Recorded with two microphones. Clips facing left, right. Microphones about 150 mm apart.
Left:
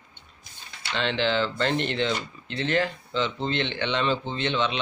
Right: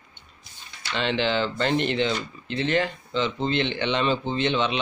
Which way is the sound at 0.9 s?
5° right (ahead or behind).